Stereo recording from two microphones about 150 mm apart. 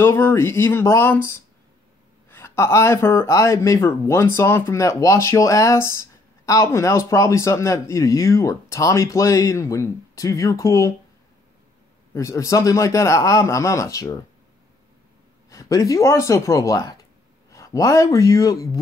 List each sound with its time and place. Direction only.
0.0 s speech: 15° left (ahead or behind)
12.1 s speech: 20° left (ahead or behind)
15.5 s speech: 20° left (ahead or behind)